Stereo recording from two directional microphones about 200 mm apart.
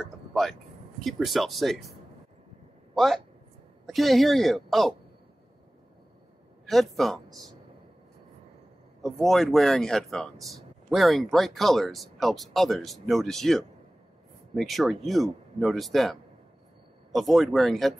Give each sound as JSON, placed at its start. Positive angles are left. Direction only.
{"t": 0.0, "sound": "a sound", "side_deg": 0}
{"t": 1.0, "sound": "speech", "side_deg": 0}
{"t": 2.9, "sound": "a sound", "side_deg": 0}
{"t": 3.8, "sound": "speech", "side_deg": 0}
{"t": 6.6, "sound": "speech", "side_deg": 0}
{"t": 9.0, "sound": "speech", "side_deg": 0}